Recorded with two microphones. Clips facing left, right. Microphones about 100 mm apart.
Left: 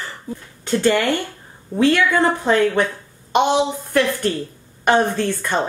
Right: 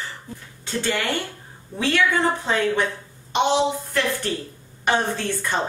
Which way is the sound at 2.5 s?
50° left (ahead or behind).